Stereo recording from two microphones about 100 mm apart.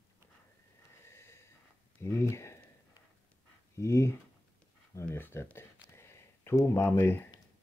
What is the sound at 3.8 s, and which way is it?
Speech, 30° left (ahead or behind).